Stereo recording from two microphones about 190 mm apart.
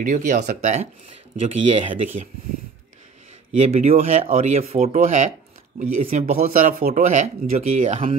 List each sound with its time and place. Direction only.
0.0 s speech: 40° right (ahead or behind)
3.6 s speech: 35° right (ahead or behind)